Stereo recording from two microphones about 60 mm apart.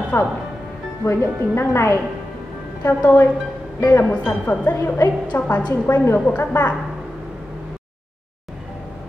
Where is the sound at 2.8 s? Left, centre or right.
Left.